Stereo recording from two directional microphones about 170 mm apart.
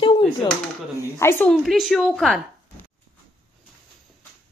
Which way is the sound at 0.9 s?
15° left (ahead or behind).